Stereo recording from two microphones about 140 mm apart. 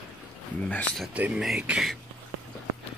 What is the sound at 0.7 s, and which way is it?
Speech, 10° left (ahead or behind).